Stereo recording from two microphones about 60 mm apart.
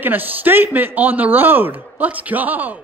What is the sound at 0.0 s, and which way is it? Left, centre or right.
A man's voice, right.